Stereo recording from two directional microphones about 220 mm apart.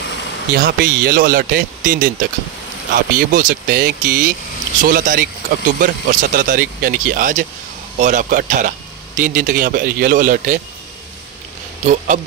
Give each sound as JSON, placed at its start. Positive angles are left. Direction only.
{"t": 0.5, "sound": "speech", "side_deg": -45}
{"t": 11.8, "sound": "speech", "side_deg": -35}